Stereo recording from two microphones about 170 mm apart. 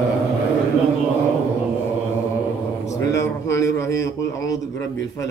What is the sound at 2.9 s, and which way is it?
A man's voice, 15° left (ahead or behind).